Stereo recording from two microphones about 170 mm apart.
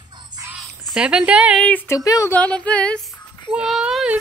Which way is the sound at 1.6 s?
10° left (ahead or behind).